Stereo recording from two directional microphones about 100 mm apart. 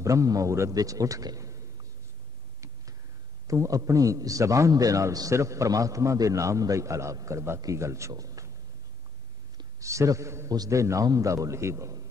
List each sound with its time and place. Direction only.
0.0 s a man's voice: 35° right (ahead or behind)
3.4 s a man's voice: 35° right (ahead or behind)
9.8 s a man's voice: 30° right (ahead or behind)